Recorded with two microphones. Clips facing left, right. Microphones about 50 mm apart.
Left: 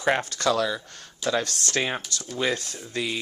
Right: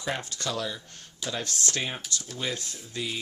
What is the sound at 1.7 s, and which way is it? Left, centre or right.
Speech, left.